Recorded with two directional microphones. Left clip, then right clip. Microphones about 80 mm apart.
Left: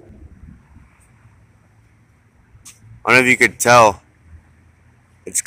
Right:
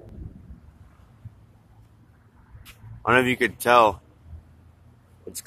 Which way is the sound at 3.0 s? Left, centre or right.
Left.